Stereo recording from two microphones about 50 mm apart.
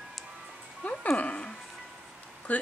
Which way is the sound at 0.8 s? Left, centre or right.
Left.